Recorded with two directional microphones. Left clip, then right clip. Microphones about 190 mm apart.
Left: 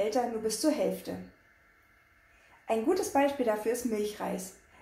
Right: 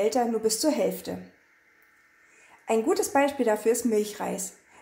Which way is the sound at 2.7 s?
50° right (ahead or behind).